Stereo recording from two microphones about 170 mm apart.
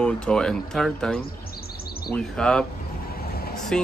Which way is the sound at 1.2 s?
60° left (ahead or behind).